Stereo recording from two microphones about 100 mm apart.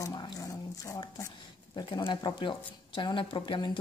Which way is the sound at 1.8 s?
55° left (ahead or behind).